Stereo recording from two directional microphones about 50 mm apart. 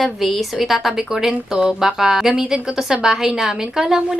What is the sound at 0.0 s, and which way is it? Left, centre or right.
A woman's voice, centre.